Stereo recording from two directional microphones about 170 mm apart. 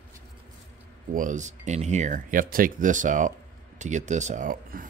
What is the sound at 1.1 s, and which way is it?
Speech, 50° right (ahead or behind).